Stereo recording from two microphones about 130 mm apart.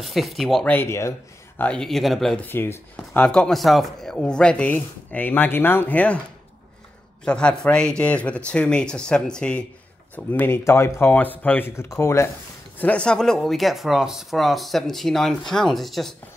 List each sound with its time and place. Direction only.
0.0 s speech: centre (ahead or behind)
0.7 s speech: 20° left (ahead or behind)
1.6 s speech: 5° left (ahead or behind)
2.4 s speech: 15° left (ahead or behind)
3.2 s speech: 5° left (ahead or behind)
7.2 s speech: 10° left (ahead or behind)
12.7 s speech: 10° left (ahead or behind)